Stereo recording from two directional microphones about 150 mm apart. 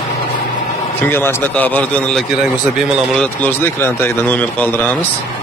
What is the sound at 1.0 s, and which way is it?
A man's voice, 15° left (ahead or behind).